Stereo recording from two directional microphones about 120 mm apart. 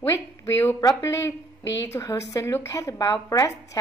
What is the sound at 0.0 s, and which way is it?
A woman's voice, 25° left (ahead or behind).